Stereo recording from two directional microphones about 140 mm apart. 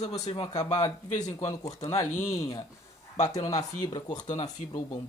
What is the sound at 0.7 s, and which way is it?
Speech, 55° left (ahead or behind).